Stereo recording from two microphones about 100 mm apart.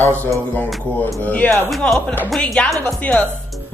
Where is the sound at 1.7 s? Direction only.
5° left (ahead or behind).